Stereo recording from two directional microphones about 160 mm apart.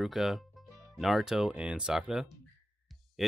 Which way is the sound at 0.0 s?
Centre (ahead or behind).